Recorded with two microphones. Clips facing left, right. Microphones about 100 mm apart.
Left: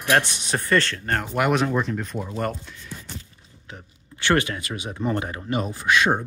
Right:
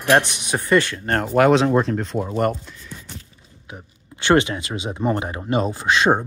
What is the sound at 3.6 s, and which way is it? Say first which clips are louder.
Speech: right 3 dB; 20° right (ahead or behind).